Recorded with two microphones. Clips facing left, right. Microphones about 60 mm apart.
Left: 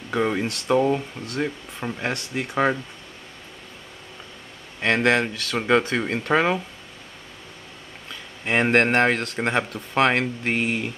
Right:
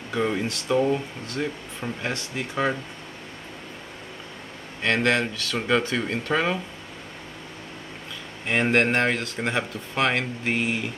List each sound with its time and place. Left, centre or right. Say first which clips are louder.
0.1 s speech: left 2 dB; centre
4.8 s speech: left 2 dB; left
8.5 s speech: left 2 dB; centre
10.5 s speech: left 1 dB; centre